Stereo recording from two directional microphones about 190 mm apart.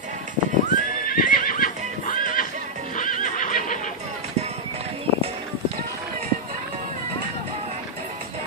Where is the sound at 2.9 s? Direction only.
45° left (ahead or behind).